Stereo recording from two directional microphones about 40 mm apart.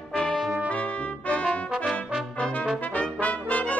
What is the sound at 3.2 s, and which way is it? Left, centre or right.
Brass instrument, left.